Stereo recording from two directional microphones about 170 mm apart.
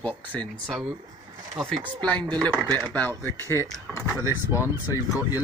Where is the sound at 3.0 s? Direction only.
10° left (ahead or behind).